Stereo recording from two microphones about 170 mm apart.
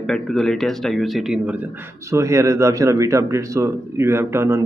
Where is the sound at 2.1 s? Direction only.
15° right (ahead or behind).